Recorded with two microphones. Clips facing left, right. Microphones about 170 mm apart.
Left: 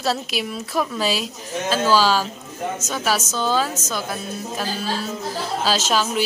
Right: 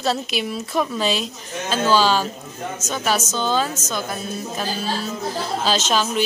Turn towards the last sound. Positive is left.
turn(degrees=5)  # may be behind; listen again after turning